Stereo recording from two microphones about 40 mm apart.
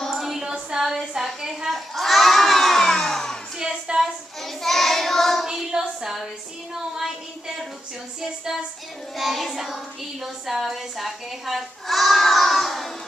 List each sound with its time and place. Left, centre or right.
0.0 s music: centre
1.4 s a woman's voice: centre
1.7 s children shouting: centre
3.5 s a sound: centre
4.4 s child singing: centre
5.8 s a sound: centre
9.1 s child singing: centre
10.2 s a woman's voice: centre